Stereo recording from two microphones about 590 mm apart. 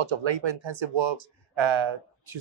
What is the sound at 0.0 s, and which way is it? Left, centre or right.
A man's voice, right.